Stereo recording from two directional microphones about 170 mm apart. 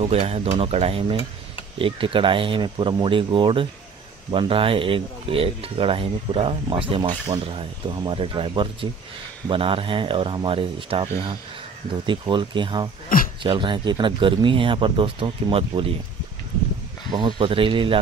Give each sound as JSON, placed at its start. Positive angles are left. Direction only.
{"t": 0.0, "sound": "speech", "side_deg": -35}
{"t": 17.1, "sound": "speech", "side_deg": -30}